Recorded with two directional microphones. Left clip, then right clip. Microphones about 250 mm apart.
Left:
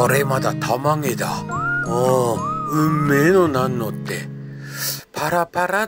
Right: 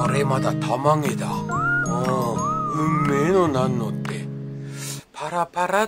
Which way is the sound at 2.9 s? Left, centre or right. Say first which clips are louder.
Left 2 dB; centre.